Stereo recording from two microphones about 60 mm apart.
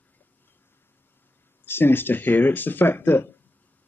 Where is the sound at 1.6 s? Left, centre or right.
Left.